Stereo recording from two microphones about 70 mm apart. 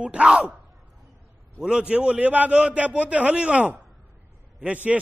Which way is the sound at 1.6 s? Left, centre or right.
Centre.